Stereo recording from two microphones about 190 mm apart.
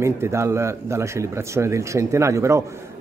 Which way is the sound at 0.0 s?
15° right (ahead or behind).